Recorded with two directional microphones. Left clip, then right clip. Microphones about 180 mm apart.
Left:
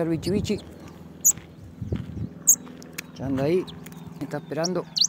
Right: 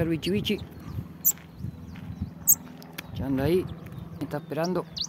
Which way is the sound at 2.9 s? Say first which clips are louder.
Left 1 dB; 10° right (ahead or behind).